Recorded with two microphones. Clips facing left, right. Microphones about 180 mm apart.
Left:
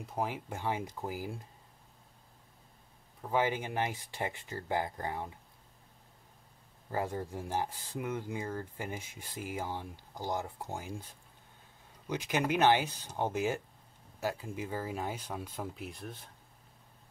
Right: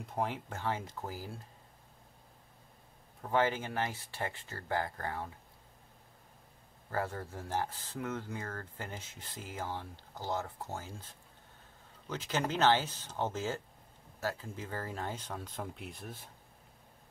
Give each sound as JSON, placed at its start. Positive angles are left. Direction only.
{"t": 0.0, "sound": "speech", "side_deg": 5}
{"t": 3.2, "sound": "speech", "side_deg": 10}
{"t": 6.9, "sound": "speech", "side_deg": 15}